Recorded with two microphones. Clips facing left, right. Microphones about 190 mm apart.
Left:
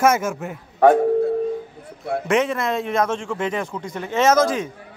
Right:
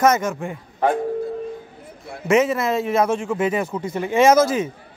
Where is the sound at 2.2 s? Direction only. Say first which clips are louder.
Right 4 dB; 5° right (ahead or behind).